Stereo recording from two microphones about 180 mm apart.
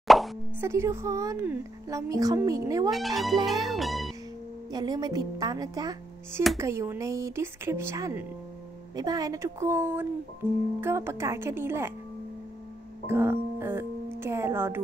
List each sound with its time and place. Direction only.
0.1 s plop: centre (ahead or behind)
0.6 s speech: 15° right (ahead or behind)
2.9 s speech: centre (ahead or behind)
4.6 s speech: 20° right (ahead or behind)
13.0 s music: 15° right (ahead or behind)